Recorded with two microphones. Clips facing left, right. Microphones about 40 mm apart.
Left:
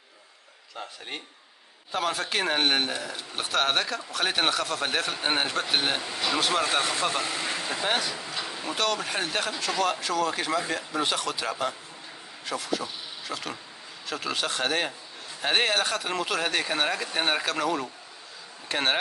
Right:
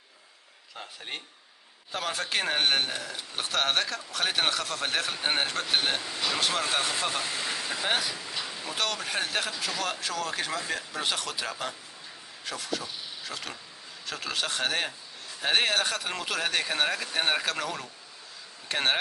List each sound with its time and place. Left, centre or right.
0.7 s a man's voice: centre
7.8 s a man's voice: centre